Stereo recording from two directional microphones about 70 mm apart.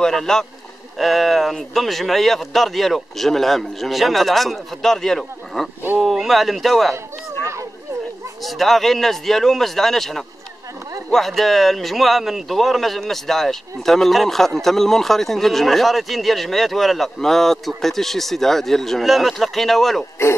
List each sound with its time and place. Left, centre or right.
0.0 s speech: centre
8.4 s speech: centre